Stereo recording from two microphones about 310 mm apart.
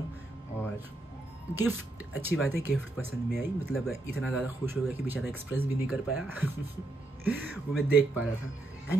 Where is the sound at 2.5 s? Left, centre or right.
Centre.